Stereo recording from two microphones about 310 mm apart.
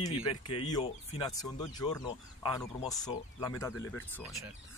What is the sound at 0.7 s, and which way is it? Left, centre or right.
Speech, centre.